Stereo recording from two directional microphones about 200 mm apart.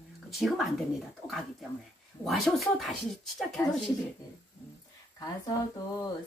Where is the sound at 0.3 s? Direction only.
Centre (ahead or behind).